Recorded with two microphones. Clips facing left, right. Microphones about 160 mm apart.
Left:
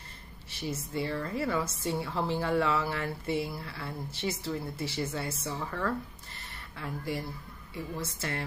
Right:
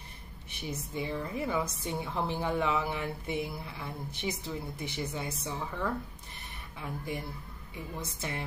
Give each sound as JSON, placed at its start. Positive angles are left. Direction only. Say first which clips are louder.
{"t": 0.5, "sound": "a woman's voice", "louder": "left 3 dB", "side_deg": -15}